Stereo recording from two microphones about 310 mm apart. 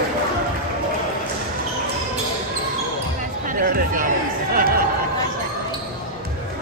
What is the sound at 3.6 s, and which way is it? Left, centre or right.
Chatter, right.